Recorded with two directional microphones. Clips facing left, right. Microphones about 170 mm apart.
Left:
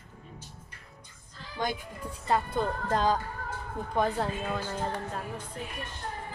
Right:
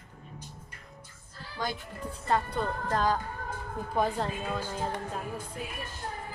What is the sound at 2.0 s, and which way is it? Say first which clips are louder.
Speech: even; 10° left (ahead or behind).